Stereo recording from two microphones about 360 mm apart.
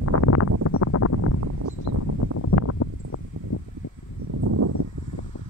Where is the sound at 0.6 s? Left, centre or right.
Left.